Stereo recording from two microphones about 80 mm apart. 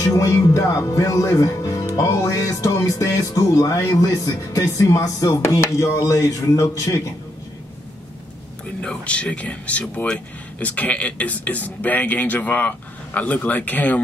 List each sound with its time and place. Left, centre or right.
0.0 s speech: left
8.8 s speech: centre